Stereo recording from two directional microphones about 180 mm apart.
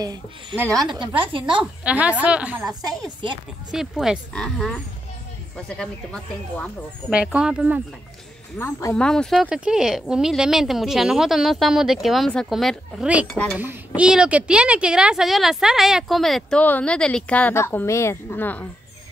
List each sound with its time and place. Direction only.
0.0 s speech: 20° right (ahead or behind)
1.6 s a woman's voice: 5° right (ahead or behind)
7.1 s speech: 5° right (ahead or behind)
8.5 s speech: 15° left (ahead or behind)